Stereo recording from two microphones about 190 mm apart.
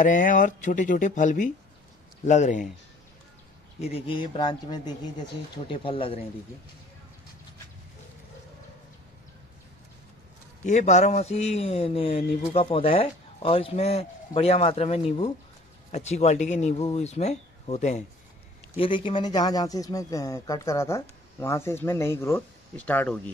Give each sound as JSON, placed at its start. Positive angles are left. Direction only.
{"t": 0.0, "sound": "speech", "side_deg": 45}
{"t": 3.9, "sound": "speech", "side_deg": 25}
{"t": 10.6, "sound": "speech", "side_deg": 40}
{"t": 18.8, "sound": "speech", "side_deg": 25}